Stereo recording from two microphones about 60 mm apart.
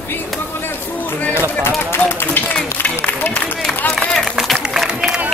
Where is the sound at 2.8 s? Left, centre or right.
Left.